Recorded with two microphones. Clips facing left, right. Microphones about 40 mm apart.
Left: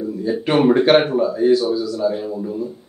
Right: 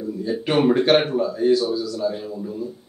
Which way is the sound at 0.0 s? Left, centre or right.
Centre.